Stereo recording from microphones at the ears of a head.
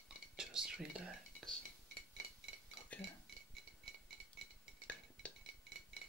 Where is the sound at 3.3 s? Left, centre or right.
Right.